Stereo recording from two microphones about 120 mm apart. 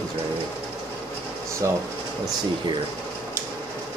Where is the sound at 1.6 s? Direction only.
25° right (ahead or behind).